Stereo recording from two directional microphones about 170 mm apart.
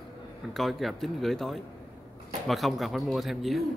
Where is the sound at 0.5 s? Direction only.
Centre (ahead or behind).